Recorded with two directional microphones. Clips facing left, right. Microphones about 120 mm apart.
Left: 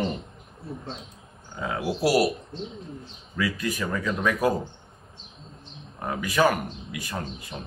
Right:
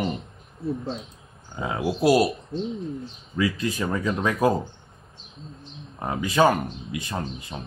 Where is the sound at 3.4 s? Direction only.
25° right (ahead or behind).